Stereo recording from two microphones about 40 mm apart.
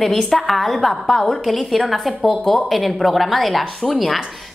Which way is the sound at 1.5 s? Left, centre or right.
Centre.